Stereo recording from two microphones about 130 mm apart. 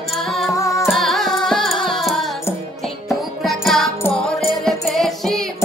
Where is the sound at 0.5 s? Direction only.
25° left (ahead or behind).